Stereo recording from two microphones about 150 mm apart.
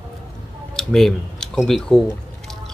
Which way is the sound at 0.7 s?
5° left (ahead or behind).